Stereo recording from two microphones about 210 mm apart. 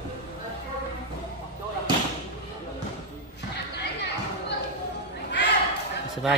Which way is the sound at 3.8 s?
55° left (ahead or behind).